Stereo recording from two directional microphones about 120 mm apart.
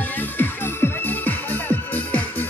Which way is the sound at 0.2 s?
20° left (ahead or behind).